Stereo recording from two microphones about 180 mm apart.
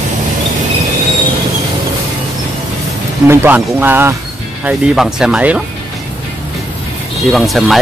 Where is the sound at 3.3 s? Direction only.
10° right (ahead or behind).